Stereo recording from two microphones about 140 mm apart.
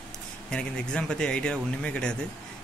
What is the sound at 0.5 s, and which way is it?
Speech, 5° left (ahead or behind).